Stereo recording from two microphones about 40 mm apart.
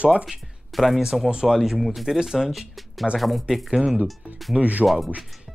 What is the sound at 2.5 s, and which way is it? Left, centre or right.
Speech, centre.